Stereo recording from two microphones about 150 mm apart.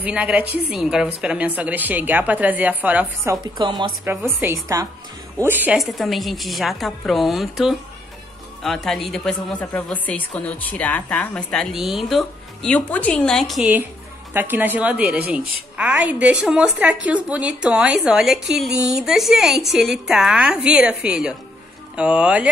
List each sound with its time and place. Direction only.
0.0 s a woman's voice: 10° right (ahead or behind)
3.5 s speech: 30° right (ahead or behind)
4.0 s a woman's voice: 15° right (ahead or behind)
5.8 s a woman's voice: centre (ahead or behind)
14.3 s a woman's voice: 10° right (ahead or behind)